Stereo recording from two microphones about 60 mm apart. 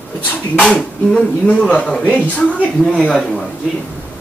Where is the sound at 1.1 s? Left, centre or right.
Centre.